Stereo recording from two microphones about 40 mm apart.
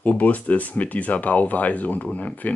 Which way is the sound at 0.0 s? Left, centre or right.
Left.